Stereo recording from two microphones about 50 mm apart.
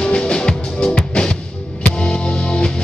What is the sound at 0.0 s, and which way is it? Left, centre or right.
Music, centre.